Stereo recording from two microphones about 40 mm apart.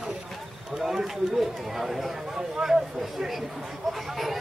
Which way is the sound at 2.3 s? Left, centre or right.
Centre.